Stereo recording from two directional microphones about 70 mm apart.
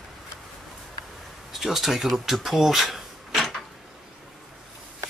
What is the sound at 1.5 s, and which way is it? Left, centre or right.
Speech, centre.